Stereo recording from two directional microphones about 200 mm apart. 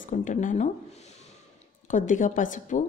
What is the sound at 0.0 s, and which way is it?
A woman's voice, 40° left (ahead or behind).